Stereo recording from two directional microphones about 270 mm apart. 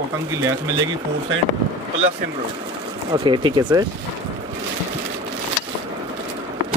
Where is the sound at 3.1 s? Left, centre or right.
Centre.